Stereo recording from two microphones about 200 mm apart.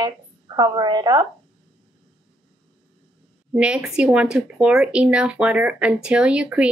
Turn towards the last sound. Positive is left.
turn(degrees=-5)  # may be behind; listen again after turning